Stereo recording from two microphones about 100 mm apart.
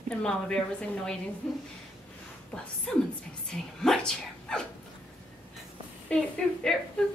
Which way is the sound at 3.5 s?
5° left (ahead or behind).